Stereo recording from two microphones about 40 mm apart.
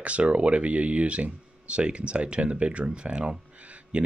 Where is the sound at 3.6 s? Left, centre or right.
Right.